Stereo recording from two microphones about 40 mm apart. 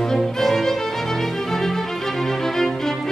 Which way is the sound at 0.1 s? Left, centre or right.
Centre.